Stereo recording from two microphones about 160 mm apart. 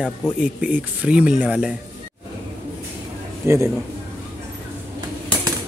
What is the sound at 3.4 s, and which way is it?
Speech, 15° right (ahead or behind).